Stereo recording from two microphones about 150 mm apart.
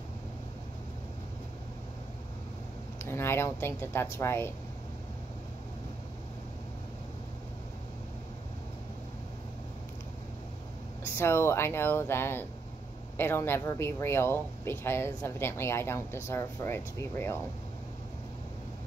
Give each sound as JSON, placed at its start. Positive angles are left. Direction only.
{"t": 3.0, "sound": "speech", "side_deg": 15}
{"t": 11.1, "sound": "speech", "side_deg": 15}